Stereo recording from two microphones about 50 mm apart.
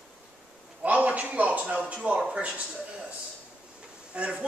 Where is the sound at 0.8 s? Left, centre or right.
Right.